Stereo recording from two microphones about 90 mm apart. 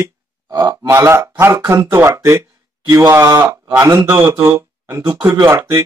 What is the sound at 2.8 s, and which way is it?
Speech, 40° right (ahead or behind).